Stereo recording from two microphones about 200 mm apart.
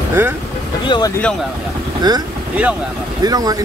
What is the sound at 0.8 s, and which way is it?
Speech, 20° left (ahead or behind).